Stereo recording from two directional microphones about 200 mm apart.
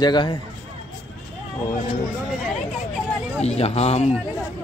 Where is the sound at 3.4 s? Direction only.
30° left (ahead or behind).